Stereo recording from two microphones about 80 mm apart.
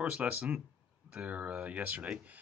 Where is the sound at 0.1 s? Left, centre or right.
Centre.